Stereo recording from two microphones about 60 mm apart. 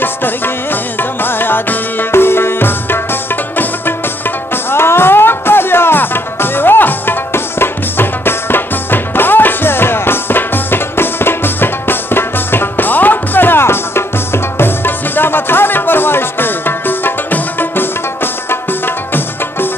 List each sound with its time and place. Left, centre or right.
0.0 s music: left